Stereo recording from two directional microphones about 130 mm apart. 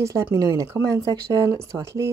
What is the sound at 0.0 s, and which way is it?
Speech, 25° right (ahead or behind).